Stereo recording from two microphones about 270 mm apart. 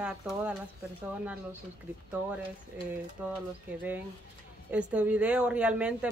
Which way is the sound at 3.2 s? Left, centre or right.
Centre.